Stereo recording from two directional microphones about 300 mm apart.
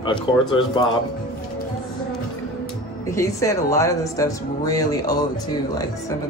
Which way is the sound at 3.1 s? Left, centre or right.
Centre.